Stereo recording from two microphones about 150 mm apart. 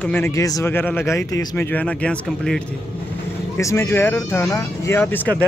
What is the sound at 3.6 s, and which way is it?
Speech, 20° left (ahead or behind).